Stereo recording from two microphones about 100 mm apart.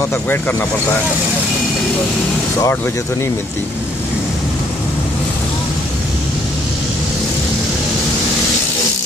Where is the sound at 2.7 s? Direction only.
25° left (ahead or behind).